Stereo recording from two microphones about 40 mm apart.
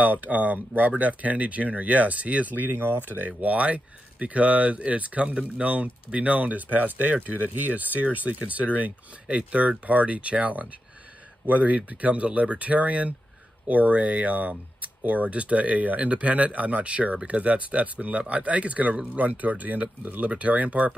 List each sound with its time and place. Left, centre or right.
0.0 s speech: right
2.8 s speech: right